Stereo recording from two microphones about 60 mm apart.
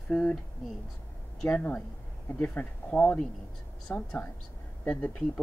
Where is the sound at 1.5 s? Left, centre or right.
Left.